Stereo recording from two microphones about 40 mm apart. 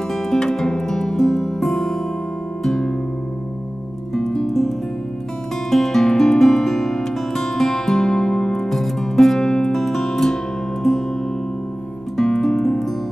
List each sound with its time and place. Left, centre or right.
0.1 s music: centre
4.1 s music: centre
12.2 s music: centre